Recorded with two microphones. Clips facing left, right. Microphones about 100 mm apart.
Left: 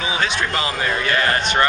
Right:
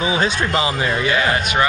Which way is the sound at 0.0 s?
30° right (ahead or behind).